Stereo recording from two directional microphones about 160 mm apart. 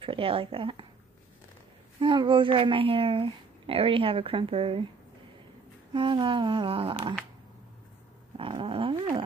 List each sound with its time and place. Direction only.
0.0 s speech: 35° right (ahead or behind)
2.0 s speech: 30° right (ahead or behind)
5.9 s speech: 30° right (ahead or behind)
8.4 s speech: 35° right (ahead or behind)